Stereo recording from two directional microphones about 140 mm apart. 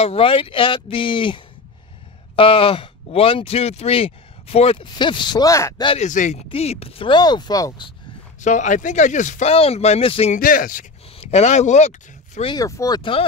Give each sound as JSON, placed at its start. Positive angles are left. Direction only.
{"t": 0.0, "sound": "speech", "side_deg": 45}
{"t": 4.9, "sound": "speech", "side_deg": 35}
{"t": 5.9, "sound": "speech", "side_deg": 55}
{"t": 6.5, "sound": "speech", "side_deg": 45}
{"t": 8.4, "sound": "speech", "side_deg": 60}
{"t": 10.3, "sound": "speech", "side_deg": 80}
{"t": 11.1, "sound": "speech", "side_deg": 50}
{"t": 12.5, "sound": "speech", "side_deg": 25}